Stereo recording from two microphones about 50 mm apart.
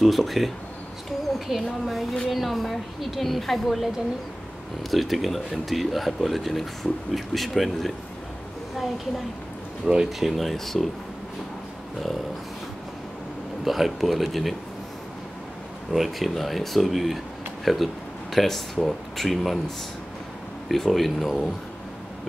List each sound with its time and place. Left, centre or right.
0.0 s speech: centre
1.5 s speech: centre
4.9 s speech: centre
9.9 s speech: centre
10.2 s speech: centre
13.7 s speech: centre
15.9 s speech: centre
20.6 s speech: centre